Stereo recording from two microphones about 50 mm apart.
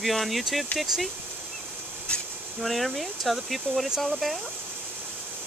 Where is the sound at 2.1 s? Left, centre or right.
Left.